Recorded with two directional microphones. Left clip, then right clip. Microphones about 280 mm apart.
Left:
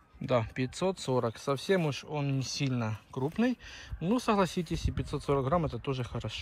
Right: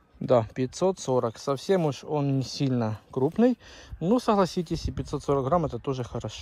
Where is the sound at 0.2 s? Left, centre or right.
Centre.